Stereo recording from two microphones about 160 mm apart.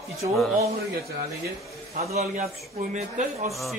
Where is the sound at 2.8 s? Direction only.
50° right (ahead or behind).